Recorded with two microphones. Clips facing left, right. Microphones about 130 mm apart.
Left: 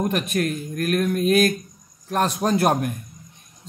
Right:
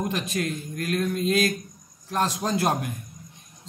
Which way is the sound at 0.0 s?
55° left (ahead or behind).